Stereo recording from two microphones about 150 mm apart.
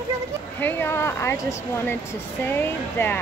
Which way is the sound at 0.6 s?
15° left (ahead or behind).